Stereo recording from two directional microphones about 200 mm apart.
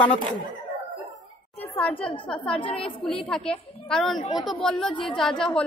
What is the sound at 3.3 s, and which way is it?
A woman's voice, 5° left (ahead or behind).